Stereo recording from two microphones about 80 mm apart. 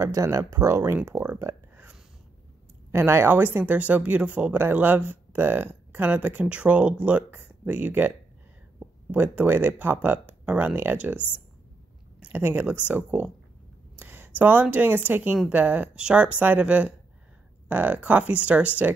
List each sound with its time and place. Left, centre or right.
0.0 s speech: right
12.2 s speech: right